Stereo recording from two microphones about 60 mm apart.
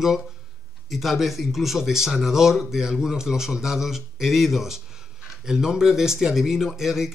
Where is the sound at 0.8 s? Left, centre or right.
Centre.